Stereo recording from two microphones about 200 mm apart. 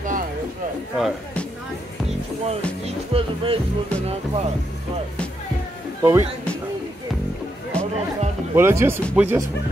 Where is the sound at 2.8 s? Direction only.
30° right (ahead or behind).